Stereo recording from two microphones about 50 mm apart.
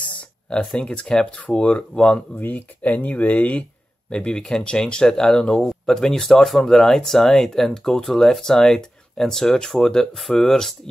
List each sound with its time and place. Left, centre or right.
0.0 s a sound: left
0.7 s speech: centre
2.3 s speech: left; by 10.8 s centre